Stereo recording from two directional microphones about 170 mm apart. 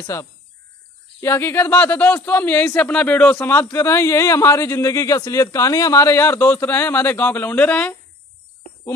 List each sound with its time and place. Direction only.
0.0 s a man's voice: 20° left (ahead or behind)